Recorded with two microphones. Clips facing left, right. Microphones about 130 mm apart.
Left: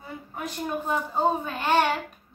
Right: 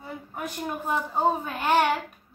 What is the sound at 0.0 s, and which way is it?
A woman's voice, 5° right (ahead or behind).